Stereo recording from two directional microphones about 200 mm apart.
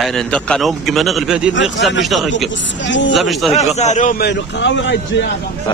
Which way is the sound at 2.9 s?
65° left (ahead or behind).